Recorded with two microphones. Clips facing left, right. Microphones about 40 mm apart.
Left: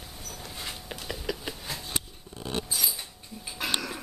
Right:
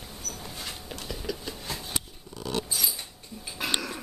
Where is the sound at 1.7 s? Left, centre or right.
Centre.